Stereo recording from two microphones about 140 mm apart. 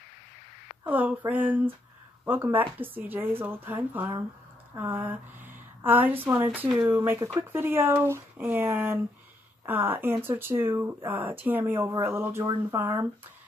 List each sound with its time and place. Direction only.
0.8 s speech: 10° right (ahead or behind)